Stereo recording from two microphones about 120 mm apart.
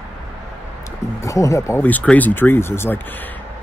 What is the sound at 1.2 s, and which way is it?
Speech, 25° left (ahead or behind).